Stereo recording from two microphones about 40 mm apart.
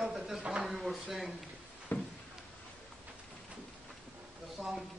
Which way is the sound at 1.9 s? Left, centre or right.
Left.